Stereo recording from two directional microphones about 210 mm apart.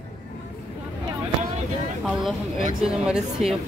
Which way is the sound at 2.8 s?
5° right (ahead or behind).